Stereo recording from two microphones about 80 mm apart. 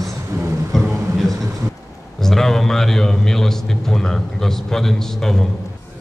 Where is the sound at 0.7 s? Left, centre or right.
Centre.